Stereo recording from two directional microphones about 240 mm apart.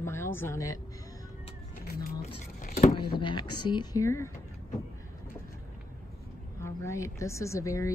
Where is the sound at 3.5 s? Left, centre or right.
Centre.